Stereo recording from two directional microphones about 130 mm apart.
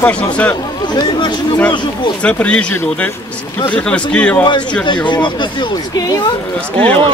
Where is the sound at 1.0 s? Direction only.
35° left (ahead or behind).